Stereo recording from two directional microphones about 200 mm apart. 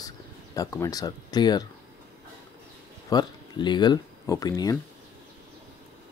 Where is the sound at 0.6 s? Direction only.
15° left (ahead or behind).